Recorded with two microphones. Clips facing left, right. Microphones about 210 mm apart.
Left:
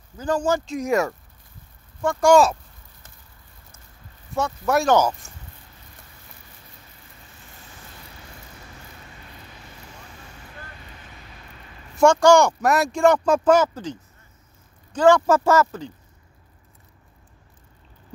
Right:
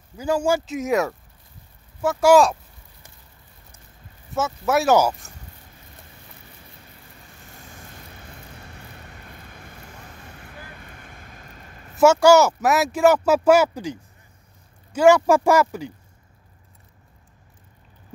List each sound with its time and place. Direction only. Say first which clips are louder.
0.2 s speech: right 1 dB; 10° right (ahead or behind)
4.3 s speech: even; 5° right (ahead or behind)
9.5 s vehicle: right 1 dB; 50° right (ahead or behind)
10.9 s vehicle: right 1 dB; 50° right (ahead or behind)
11.9 s speech: right 1 dB; 5° right (ahead or behind)